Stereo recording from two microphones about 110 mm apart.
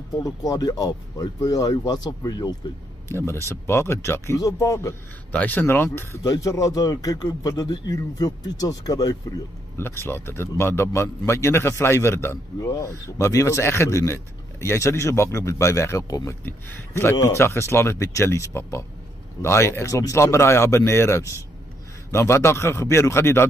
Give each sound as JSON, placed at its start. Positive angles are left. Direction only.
{"t": 0.1, "sound": "speech", "side_deg": 35}
{"t": 3.1, "sound": "a man's voice", "side_deg": 25}
{"t": 5.3, "sound": "speech", "side_deg": 15}
{"t": 6.2, "sound": "speech", "side_deg": 30}
{"t": 9.8, "sound": "a man's voice", "side_deg": 20}
{"t": 16.4, "sound": "a man's voice", "side_deg": 20}